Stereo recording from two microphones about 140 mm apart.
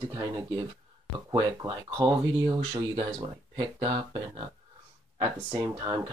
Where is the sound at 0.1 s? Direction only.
25° right (ahead or behind).